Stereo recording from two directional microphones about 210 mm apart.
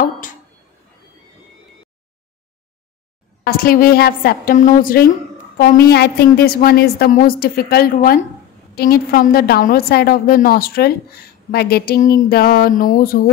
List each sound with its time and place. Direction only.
3.4 s a woman's voice: 45° left (ahead or behind)